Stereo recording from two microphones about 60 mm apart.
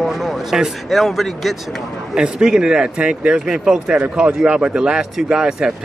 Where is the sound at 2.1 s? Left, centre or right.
Centre.